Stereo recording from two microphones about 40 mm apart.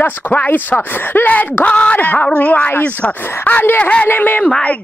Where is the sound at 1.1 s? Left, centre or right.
Left.